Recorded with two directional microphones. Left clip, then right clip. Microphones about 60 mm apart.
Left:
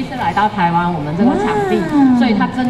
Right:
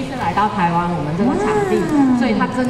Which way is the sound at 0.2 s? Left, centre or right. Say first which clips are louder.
Left 2 dB; centre.